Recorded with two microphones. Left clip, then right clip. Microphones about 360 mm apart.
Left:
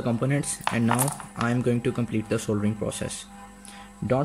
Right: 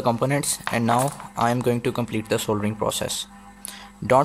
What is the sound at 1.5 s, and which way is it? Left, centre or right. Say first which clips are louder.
Speech: right 2 dB; centre.